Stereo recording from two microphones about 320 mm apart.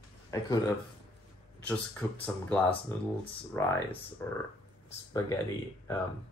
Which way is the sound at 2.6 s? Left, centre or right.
Centre.